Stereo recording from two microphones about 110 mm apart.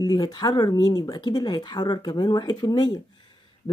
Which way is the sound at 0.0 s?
35° left (ahead or behind).